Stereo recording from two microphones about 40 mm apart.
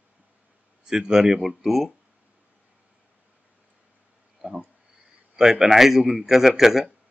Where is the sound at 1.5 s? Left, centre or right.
Centre.